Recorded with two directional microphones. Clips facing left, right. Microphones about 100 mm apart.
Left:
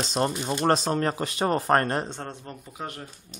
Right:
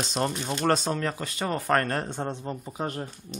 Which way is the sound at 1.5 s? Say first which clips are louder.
Left 1 dB; 30° left (ahead or behind).